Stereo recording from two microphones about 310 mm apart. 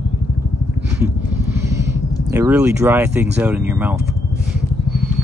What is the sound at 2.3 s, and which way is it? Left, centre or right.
Speech, centre.